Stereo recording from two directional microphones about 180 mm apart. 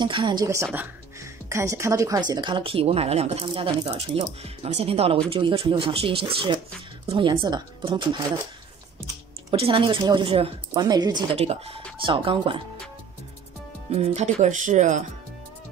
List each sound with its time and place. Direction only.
0.0 s speech: 25° right (ahead or behind)
9.5 s speech: 30° right (ahead or behind)
11.3 s speech: 35° right (ahead or behind)
13.9 s speech: 35° right (ahead or behind)